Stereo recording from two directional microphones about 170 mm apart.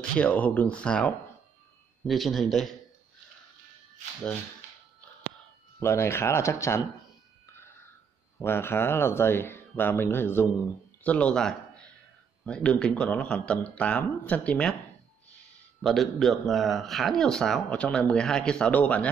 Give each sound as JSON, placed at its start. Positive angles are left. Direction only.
{"t": 0.1, "sound": "speech", "side_deg": 5}
{"t": 5.8, "sound": "speech", "side_deg": 15}
{"t": 8.4, "sound": "a man's voice", "side_deg": 15}
{"t": 15.8, "sound": "speech", "side_deg": 0}